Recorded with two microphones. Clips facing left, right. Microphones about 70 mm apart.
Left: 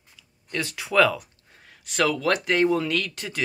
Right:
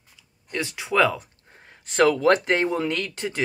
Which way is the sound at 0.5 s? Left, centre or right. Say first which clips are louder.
Right 1 dB; right.